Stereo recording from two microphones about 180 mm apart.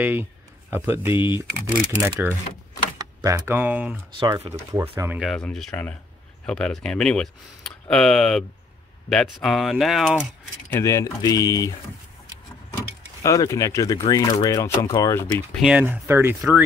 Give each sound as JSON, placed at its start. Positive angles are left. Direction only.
{"t": 0.0, "sound": "speech", "side_deg": -10}
{"t": 1.1, "sound": "speech", "side_deg": 25}
{"t": 2.0, "sound": "speech", "side_deg": -10}
{"t": 4.2, "sound": "speech", "side_deg": -30}
{"t": 4.9, "sound": "speech", "side_deg": -10}
{"t": 5.2, "sound": "speech", "side_deg": 5}
{"t": 10.7, "sound": "speech", "side_deg": 15}
{"t": 13.2, "sound": "speech", "side_deg": 15}
{"t": 15.6, "sound": "speech", "side_deg": -10}